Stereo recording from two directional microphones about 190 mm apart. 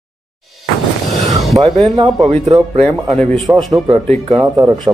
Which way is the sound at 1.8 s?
30° right (ahead or behind).